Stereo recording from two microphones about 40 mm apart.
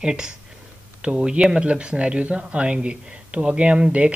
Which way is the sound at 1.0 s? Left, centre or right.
Right.